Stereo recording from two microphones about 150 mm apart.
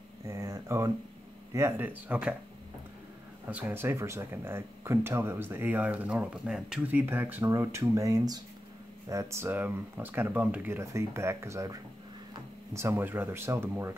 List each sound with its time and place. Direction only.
0.2 s a sound: 20° right (ahead or behind)
1.5 s speech: 15° right (ahead or behind)
3.4 s speech: 10° right (ahead or behind)